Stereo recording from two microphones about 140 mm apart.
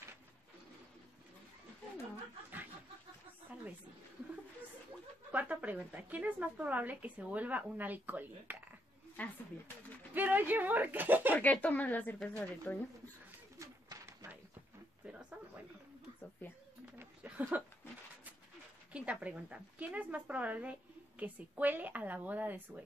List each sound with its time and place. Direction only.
3.5 s a sound: 10° right (ahead or behind)
5.3 s a woman's voice: 10° right (ahead or behind)
9.2 s speech: 10° left (ahead or behind)
10.1 s a woman's voice: 10° right (ahead or behind)
11.3 s speech: 10° left (ahead or behind)
13.6 s bird: 20° right (ahead or behind)
15.0 s a sound: 10° right (ahead or behind)
17.0 s a sound: 15° right (ahead or behind)
18.9 s a woman's voice: 10° right (ahead or behind)